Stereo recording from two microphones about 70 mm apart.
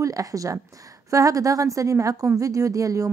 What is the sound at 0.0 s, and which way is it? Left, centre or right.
Speech, right.